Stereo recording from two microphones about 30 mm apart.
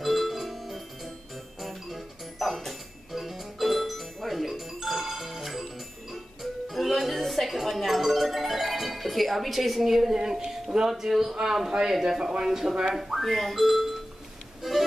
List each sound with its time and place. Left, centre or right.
0.0 s music: centre
10.1 s a man's voice: right
12.9 s speech: centre
14.6 s music: centre